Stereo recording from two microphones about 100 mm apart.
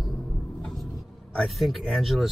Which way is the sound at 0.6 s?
5° left (ahead or behind).